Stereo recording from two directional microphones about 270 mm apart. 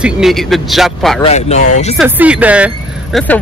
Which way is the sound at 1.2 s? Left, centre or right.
Left.